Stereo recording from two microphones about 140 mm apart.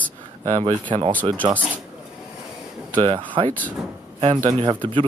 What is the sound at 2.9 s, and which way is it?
Speech, 40° right (ahead or behind).